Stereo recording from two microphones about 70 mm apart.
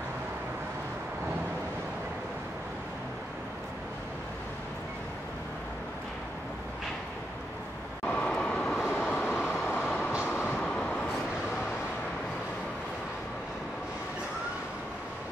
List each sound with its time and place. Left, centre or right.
8.0 s vehicle: centre
10.3 s vehicle: left
10.6 s vehicle: centre